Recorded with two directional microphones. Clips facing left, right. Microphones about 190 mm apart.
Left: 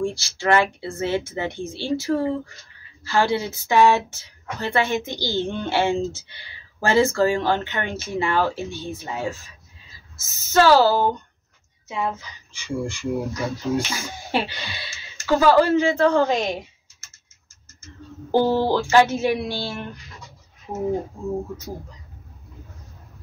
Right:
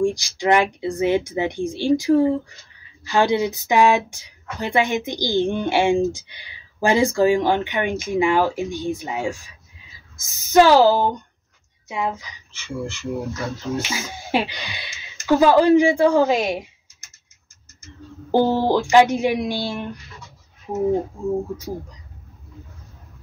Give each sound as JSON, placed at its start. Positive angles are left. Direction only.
{"t": 0.0, "sound": "speech", "side_deg": -15}
{"t": 12.5, "sound": "speech", "side_deg": 15}
{"t": 14.3, "sound": "speech", "side_deg": -15}
{"t": 18.3, "sound": "speech", "side_deg": -15}